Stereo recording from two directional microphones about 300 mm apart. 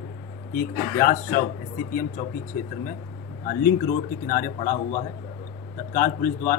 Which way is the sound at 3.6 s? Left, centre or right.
Left.